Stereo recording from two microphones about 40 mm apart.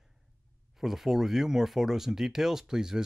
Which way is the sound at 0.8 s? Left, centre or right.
Centre.